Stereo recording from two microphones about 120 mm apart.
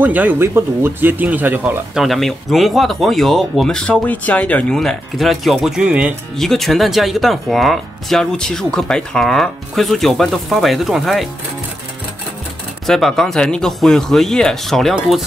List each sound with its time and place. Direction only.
0.0 s speech: 15° right (ahead or behind)
2.0 s speech: centre (ahead or behind)
6.3 s speech: centre (ahead or behind)
12.8 s speech: 5° left (ahead or behind)